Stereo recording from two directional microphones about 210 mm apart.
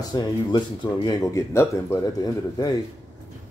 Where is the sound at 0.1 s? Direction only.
20° left (ahead or behind).